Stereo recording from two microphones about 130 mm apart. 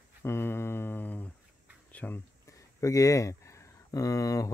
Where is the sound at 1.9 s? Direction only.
10° left (ahead or behind).